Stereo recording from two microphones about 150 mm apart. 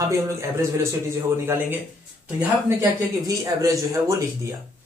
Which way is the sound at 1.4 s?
15° right (ahead or behind).